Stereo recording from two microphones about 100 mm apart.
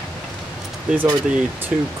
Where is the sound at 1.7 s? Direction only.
10° right (ahead or behind).